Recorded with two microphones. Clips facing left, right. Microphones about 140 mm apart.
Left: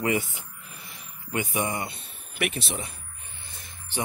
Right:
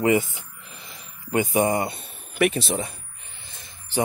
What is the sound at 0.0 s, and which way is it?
Speech, 25° right (ahead or behind).